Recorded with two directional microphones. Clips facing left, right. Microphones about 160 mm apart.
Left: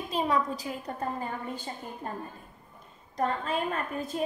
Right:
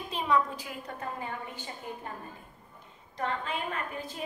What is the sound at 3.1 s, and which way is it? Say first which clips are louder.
A woman's voice: left 4 dB; 35° left (ahead or behind).